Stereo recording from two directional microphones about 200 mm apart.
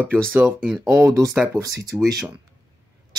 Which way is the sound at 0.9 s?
15° right (ahead or behind).